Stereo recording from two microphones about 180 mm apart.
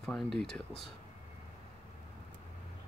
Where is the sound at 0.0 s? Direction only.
5° left (ahead or behind).